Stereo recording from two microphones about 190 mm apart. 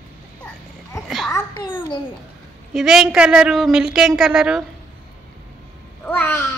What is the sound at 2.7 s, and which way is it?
A woman's voice, centre (ahead or behind).